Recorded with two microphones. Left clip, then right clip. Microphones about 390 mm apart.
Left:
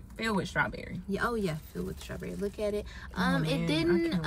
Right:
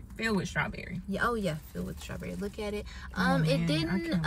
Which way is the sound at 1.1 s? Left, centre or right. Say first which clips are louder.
Right 1 dB; centre.